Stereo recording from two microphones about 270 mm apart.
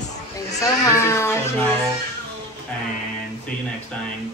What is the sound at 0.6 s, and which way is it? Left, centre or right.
Speech, centre.